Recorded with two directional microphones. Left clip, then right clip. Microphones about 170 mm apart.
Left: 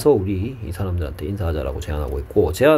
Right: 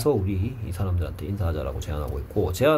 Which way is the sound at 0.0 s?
30° left (ahead or behind).